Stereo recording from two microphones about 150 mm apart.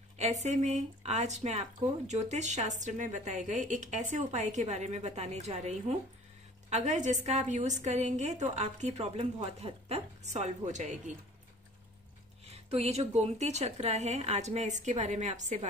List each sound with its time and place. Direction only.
0.2 s speech: 50° right (ahead or behind)
12.4 s speech: 45° right (ahead or behind)